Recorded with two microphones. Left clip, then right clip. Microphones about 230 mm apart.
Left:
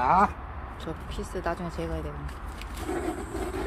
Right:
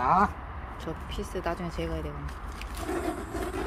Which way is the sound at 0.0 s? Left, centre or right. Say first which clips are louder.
Left 2 dB; centre.